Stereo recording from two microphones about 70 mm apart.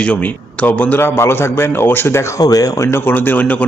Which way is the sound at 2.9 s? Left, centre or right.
Left.